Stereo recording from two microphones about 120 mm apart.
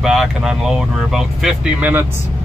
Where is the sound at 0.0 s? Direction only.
5° right (ahead or behind).